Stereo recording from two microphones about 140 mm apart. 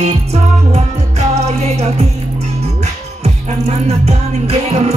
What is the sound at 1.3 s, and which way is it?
Music, 50° right (ahead or behind).